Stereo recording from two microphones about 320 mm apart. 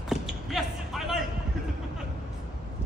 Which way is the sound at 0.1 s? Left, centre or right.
Centre.